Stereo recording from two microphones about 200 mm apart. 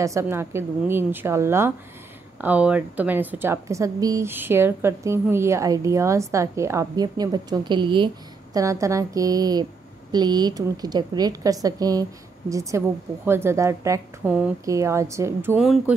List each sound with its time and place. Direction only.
0.0 s speech: 15° right (ahead or behind)